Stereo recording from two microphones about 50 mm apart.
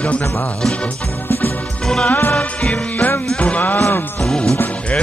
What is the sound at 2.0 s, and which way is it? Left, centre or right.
Music, left.